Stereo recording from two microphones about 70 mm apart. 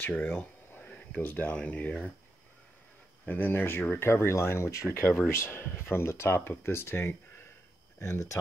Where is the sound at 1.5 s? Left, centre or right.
Centre.